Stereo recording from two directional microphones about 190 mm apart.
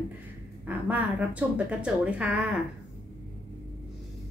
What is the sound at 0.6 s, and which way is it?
Speech, 10° right (ahead or behind).